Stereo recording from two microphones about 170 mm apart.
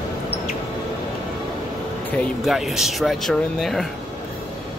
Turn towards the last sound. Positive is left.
turn(degrees=0)  # may be behind; listen again after turning